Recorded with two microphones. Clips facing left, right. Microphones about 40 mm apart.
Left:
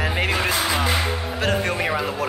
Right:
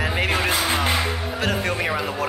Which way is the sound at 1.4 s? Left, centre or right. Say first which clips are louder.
Left 2 dB; centre.